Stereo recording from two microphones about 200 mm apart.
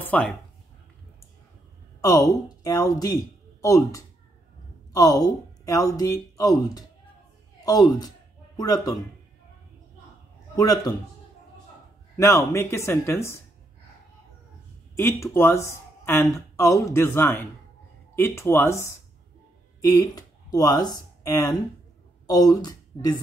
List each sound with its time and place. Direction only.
0.0 s a sound: 5° left (ahead or behind)
2.0 s speech: 15° left (ahead or behind)
10.5 s speech: 20° left (ahead or behind)
12.2 s speech: 15° left (ahead or behind)
15.0 s speech: 10° left (ahead or behind)